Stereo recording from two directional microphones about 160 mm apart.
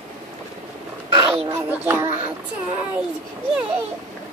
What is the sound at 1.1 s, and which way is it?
Speech, 35° right (ahead or behind).